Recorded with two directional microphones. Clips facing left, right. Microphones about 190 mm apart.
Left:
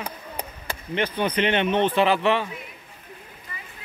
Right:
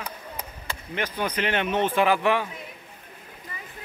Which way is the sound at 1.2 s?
5° right (ahead or behind).